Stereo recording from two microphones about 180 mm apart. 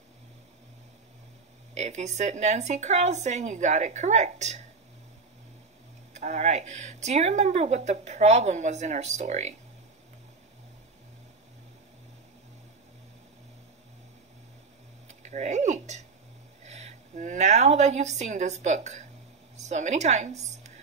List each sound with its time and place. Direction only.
1.8 s speech: 40° right (ahead or behind)
6.1 s speech: 40° right (ahead or behind)
15.0 s a sound: 40° right (ahead or behind)
16.6 s a woman's voice: 40° right (ahead or behind)